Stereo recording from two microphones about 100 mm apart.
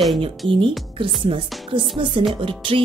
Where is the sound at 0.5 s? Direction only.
60° right (ahead or behind).